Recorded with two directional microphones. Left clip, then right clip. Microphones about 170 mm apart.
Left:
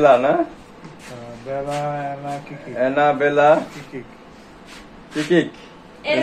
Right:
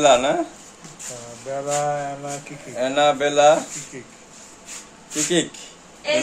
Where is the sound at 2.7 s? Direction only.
10° right (ahead or behind).